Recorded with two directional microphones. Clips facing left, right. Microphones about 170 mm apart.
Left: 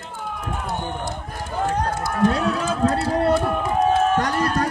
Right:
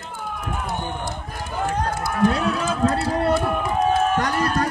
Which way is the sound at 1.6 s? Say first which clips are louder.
Left 1 dB; 40° left (ahead or behind).